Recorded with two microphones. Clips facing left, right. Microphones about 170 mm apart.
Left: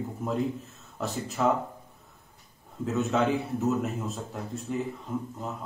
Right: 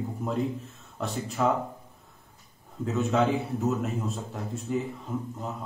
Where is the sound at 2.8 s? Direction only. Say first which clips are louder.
Right 1 dB; centre (ahead or behind).